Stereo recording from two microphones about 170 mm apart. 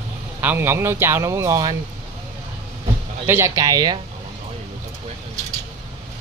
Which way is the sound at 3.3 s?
15° right (ahead or behind).